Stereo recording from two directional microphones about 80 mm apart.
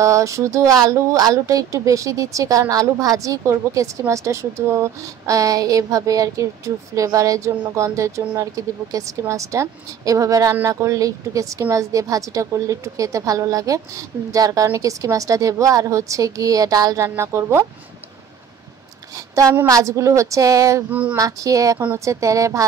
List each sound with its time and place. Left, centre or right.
0.0 s a woman's voice: right
17.0 s a woman's voice: right
19.1 s a sound: right
19.7 s a woman's voice: right
20.9 s a sound: centre
21.2 s a woman's voice: right